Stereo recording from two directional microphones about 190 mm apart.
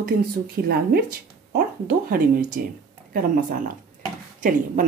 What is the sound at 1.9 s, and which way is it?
Speech, 45° right (ahead or behind).